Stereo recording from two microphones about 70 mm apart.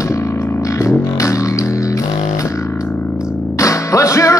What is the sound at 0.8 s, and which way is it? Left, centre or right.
Music, left.